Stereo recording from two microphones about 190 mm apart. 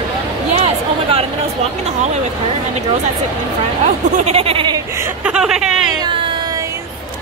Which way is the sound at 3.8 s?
35° right (ahead or behind).